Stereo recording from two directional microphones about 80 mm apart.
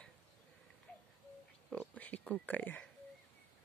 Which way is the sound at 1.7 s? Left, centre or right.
Centre.